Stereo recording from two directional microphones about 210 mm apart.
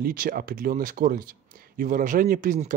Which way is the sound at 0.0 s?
40° right (ahead or behind).